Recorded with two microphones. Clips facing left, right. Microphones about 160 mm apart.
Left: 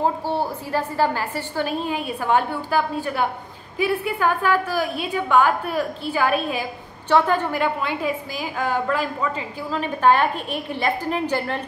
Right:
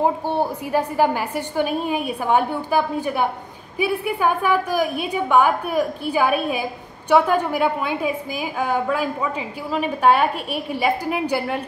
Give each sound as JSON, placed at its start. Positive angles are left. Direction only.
{"t": 0.0, "sound": "a woman's voice", "side_deg": -15}